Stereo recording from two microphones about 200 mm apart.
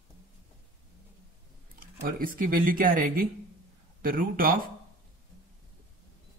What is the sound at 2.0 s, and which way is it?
A man's voice, 45° right (ahead or behind).